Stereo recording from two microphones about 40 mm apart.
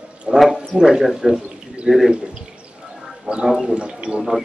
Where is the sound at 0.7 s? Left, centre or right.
Centre.